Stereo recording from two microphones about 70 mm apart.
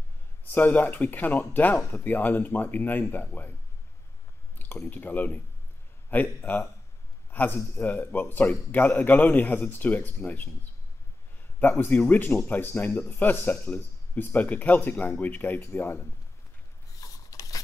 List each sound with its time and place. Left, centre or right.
0.5 s a man's voice: left
4.8 s a man's voice: left
11.6 s a man's voice: left
17.0 s a sound: left